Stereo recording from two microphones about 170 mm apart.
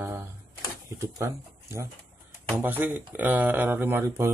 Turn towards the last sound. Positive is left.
turn(degrees=-15)  # may be behind; listen again after turning